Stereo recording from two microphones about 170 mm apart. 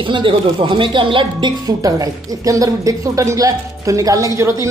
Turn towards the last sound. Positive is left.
turn(degrees=-20)  # may be behind; listen again after turning